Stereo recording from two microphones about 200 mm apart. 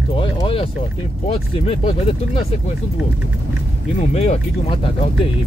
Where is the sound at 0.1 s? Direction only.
25° left (ahead or behind).